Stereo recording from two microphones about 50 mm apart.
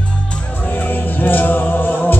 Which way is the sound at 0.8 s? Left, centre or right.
Left.